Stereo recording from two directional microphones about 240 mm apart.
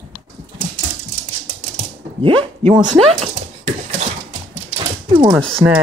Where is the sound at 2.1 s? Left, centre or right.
Right.